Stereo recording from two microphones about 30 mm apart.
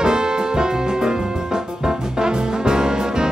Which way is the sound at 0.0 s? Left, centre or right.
Right.